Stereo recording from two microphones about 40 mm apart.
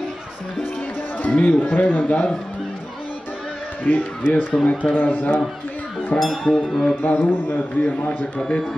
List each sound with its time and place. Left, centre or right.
1.2 s speech: left
3.9 s speech: left
6.1 s music: centre
7.0 s a man's voice: left
8.4 s a man's voice: centre